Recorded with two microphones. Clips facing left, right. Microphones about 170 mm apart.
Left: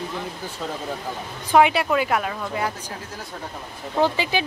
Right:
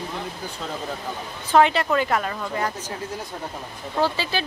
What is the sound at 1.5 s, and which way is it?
Speech, 10° left (ahead or behind).